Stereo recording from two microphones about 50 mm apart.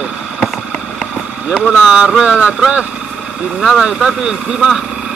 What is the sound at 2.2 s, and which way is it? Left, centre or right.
Speech, right.